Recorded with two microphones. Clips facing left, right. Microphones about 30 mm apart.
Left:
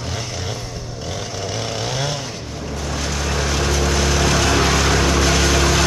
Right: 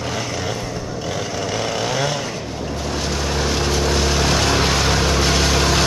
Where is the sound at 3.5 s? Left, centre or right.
Right.